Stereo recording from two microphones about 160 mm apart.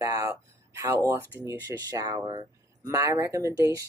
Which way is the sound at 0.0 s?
20° right (ahead or behind).